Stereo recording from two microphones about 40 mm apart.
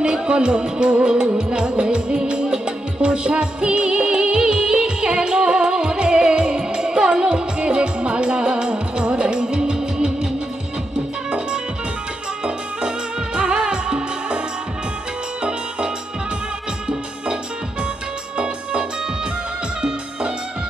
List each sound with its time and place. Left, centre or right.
0.0 s music: right
11.2 s music: right
18.4 s music: right